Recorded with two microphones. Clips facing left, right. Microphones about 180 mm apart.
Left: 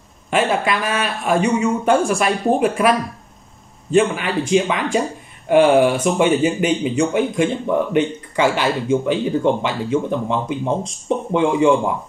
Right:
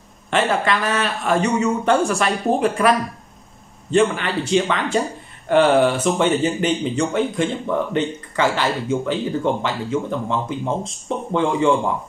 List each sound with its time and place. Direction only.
0.3 s speech: 10° left (ahead or behind)
3.9 s speech: 10° left (ahead or behind)